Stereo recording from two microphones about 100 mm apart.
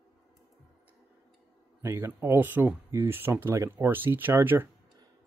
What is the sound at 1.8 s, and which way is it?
Speech, 25° right (ahead or behind).